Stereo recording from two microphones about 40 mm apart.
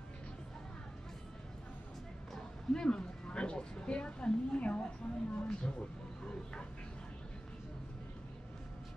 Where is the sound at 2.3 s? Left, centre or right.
Centre.